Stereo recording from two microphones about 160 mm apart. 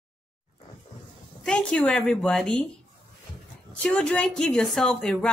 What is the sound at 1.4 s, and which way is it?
A woman's voice, 5° left (ahead or behind).